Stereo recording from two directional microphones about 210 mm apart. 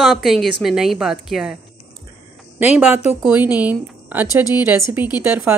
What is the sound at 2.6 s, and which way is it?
Speech, 10° right (ahead or behind).